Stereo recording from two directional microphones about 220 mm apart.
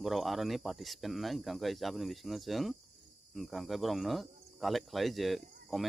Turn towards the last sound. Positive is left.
turn(degrees=0)  # may be behind; listen again after turning